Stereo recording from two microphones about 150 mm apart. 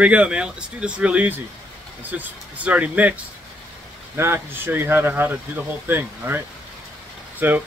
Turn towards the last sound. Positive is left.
turn(degrees=-10)  # may be behind; listen again after turning